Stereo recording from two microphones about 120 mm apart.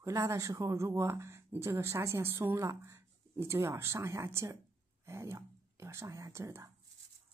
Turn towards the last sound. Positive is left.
turn(degrees=-25)  # may be behind; listen again after turning